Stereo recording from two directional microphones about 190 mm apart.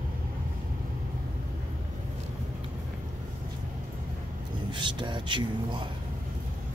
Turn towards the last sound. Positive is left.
turn(degrees=-25)  # may be behind; listen again after turning